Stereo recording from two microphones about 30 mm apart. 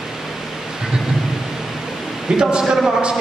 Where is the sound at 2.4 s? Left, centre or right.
Right.